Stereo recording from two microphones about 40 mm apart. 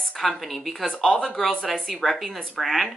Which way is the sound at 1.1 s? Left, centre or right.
Centre.